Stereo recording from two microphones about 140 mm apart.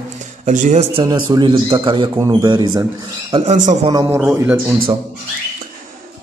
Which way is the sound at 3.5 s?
65° right (ahead or behind).